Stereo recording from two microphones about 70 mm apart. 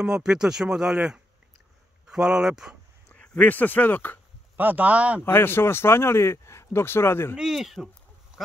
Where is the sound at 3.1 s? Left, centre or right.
Left.